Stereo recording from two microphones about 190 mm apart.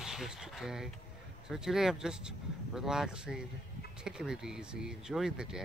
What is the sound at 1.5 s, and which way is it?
Speech, centre (ahead or behind).